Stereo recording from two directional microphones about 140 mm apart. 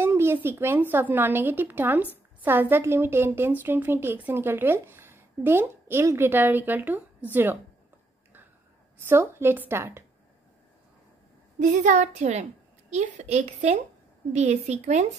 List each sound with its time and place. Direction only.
0.0 s a woman's voice: 15° right (ahead or behind)
9.0 s a woman's voice: 15° right (ahead or behind)
11.6 s a woman's voice: 65° right (ahead or behind)